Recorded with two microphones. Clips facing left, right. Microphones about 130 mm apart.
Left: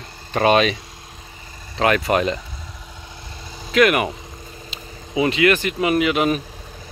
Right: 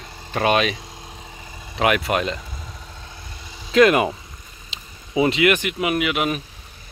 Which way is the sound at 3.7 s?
25° right (ahead or behind).